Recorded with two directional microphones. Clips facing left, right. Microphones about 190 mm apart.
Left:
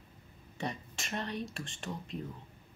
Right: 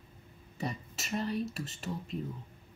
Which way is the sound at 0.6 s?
5° right (ahead or behind).